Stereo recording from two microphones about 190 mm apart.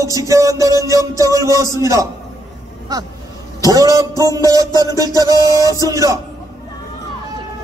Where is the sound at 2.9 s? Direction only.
20° right (ahead or behind).